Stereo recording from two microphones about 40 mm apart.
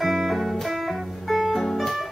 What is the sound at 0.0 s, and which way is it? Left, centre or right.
Music, centre.